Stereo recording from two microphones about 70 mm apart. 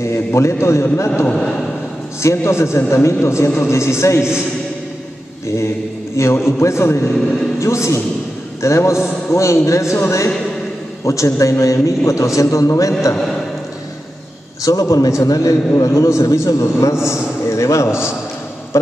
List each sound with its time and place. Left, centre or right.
0.0 s a man's voice: left
1.2 s a man's voice: centre
2.2 s a man's voice: left
6.1 s a man's voice: left
14.6 s a man's voice: left